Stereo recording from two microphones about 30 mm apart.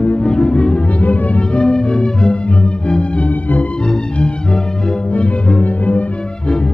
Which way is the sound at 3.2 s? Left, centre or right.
Left.